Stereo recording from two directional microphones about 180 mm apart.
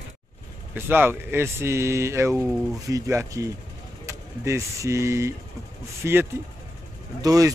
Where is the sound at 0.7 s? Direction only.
10° right (ahead or behind).